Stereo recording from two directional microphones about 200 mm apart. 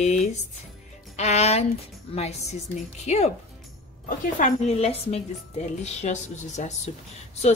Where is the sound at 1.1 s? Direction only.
35° left (ahead or behind).